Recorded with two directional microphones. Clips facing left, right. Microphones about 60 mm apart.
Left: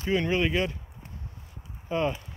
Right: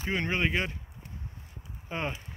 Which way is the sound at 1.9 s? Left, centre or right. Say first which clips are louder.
Left 7 dB; right.